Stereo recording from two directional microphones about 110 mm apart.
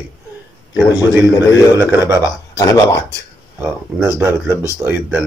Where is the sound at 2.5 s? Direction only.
35° left (ahead or behind).